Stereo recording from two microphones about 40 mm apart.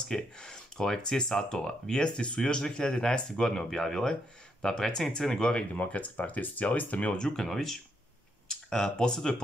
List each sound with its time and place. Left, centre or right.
0.1 s a sound: centre
1.0 s speech: centre
5.8 s speech: left
7.2 s speech: centre